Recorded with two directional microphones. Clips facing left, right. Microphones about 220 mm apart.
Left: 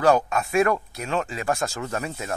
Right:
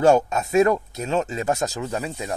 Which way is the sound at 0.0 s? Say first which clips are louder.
Right 3 dB; 25° right (ahead or behind).